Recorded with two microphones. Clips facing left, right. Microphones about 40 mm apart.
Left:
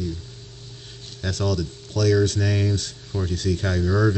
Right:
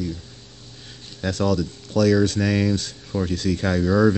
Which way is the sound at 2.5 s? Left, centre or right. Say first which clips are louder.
Right 4 dB; right.